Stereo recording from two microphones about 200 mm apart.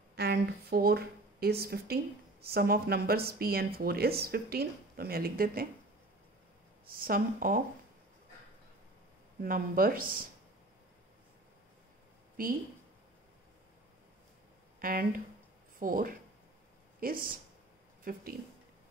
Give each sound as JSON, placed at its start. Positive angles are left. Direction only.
{"t": 0.1, "sound": "speech", "side_deg": -55}
{"t": 6.9, "sound": "speech", "side_deg": -45}
{"t": 9.4, "sound": "speech", "side_deg": -45}
{"t": 12.4, "sound": "speech", "side_deg": -45}
{"t": 14.8, "sound": "speech", "side_deg": -45}